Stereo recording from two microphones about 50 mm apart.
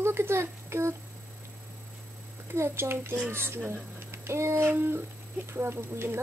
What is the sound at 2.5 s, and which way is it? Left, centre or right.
A child's voice, right.